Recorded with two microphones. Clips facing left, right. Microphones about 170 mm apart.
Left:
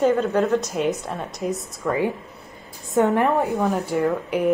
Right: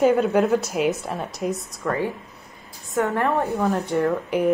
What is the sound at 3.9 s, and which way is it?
Speech, centre (ahead or behind).